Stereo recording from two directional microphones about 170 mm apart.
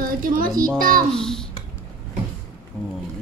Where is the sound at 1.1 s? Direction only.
5° left (ahead or behind).